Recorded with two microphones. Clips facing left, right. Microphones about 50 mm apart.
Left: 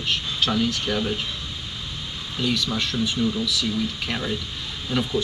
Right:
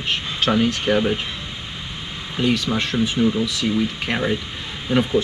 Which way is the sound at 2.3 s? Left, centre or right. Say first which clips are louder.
Right 5 dB; right.